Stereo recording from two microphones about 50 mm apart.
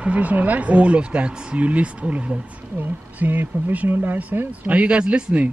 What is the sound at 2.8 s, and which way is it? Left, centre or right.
Speech, right.